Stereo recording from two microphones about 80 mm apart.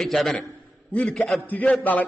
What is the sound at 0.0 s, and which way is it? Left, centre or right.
Speech, centre.